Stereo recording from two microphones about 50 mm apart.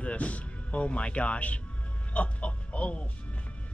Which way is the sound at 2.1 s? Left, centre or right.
Left.